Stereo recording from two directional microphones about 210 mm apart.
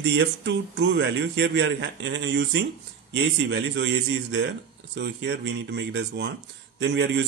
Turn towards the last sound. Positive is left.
turn(degrees=-60)  # may be behind; listen again after turning